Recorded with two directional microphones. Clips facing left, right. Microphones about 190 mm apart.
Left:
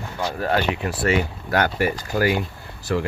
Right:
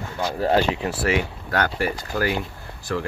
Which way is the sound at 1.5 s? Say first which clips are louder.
Left 3 dB; 10° left (ahead or behind).